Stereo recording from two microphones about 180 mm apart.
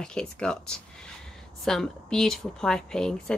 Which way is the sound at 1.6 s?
Centre (ahead or behind).